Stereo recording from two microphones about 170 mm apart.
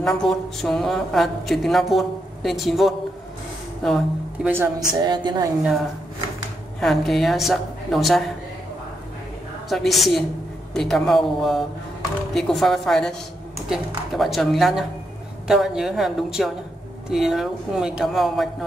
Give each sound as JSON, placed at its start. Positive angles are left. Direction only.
{"t": 0.0, "sound": "a woman's voice", "side_deg": 5}
{"t": 4.5, "sound": "speech", "side_deg": -15}
{"t": 4.9, "sound": "a woman's voice", "side_deg": -25}
{"t": 5.6, "sound": "a woman's voice", "side_deg": 0}
{"t": 9.7, "sound": "a woman's voice", "side_deg": 0}